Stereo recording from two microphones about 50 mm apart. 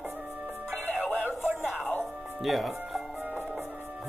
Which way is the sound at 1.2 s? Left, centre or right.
Right.